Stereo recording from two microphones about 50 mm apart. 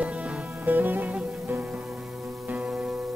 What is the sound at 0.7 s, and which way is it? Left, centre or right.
Music, right.